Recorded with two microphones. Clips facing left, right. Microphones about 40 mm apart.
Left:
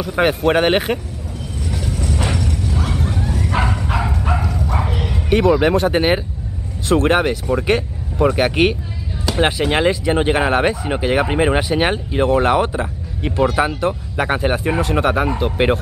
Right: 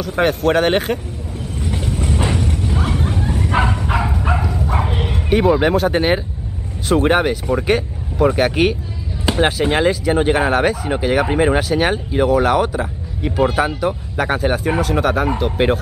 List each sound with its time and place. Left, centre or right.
0.0 s speech: centre
1.7 s a sound: right
3.7 s bow-wow: centre
4.6 s bow-wow: right
5.6 s speech: centre